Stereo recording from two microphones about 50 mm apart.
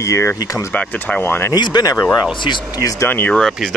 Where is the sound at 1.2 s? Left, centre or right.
Left.